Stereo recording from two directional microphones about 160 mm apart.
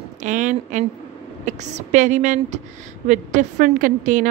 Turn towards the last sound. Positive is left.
turn(degrees=-55)  # may be behind; listen again after turning